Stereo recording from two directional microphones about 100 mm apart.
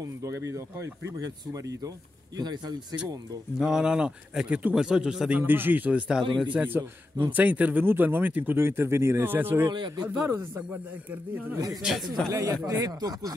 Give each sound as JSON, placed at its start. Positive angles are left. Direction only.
{"t": 0.0, "sound": "speech", "side_deg": -30}
{"t": 3.5, "sound": "speech", "side_deg": -5}
{"t": 5.4, "sound": "speech", "side_deg": -20}
{"t": 9.7, "sound": "a man's voice", "side_deg": -50}
{"t": 10.0, "sound": "speech", "side_deg": -20}
{"t": 11.8, "sound": "speech", "side_deg": 0}
{"t": 12.3, "sound": "speech", "side_deg": -35}